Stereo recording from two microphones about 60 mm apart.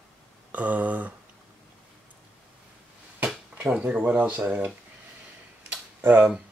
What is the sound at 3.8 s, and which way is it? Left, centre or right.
Speech, right.